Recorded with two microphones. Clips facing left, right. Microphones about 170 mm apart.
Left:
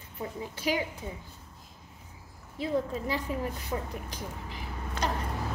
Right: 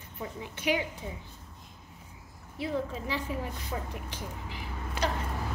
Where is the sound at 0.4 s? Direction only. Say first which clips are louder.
Right 1 dB; 35° left (ahead or behind).